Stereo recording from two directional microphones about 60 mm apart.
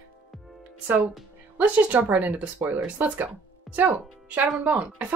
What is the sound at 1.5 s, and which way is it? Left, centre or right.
A woman's voice, right.